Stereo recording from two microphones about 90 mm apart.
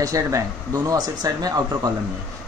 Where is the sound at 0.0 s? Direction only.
35° right (ahead or behind).